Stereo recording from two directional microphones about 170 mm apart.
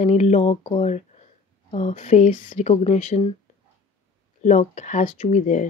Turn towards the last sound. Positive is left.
turn(degrees=50)  # may be behind; listen again after turning